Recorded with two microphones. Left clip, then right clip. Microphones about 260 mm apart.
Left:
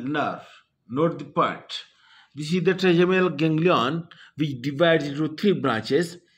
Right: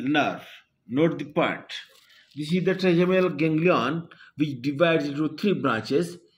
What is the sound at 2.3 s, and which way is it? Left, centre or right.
A man's voice, left.